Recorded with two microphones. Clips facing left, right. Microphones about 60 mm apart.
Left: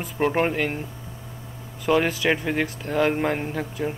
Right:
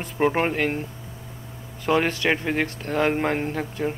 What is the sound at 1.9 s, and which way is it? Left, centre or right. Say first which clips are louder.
Speech: left 1 dB; centre.